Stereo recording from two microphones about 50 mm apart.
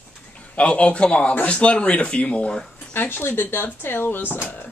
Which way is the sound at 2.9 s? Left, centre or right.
Left.